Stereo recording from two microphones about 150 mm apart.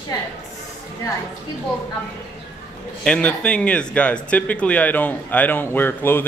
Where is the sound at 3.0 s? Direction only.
5° left (ahead or behind).